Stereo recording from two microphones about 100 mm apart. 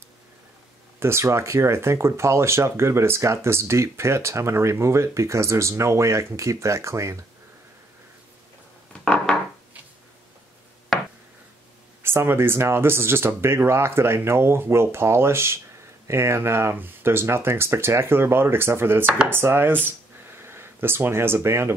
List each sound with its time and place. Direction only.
0.9 s speech: 25° right (ahead or behind)
9.0 s chopping: 10° left (ahead or behind)
10.9 s a sound: centre (ahead or behind)
12.0 s speech: 25° right (ahead or behind)